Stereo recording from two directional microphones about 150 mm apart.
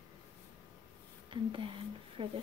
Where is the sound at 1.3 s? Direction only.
35° right (ahead or behind).